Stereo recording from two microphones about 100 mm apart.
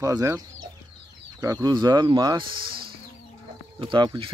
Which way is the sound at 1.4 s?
35° right (ahead or behind).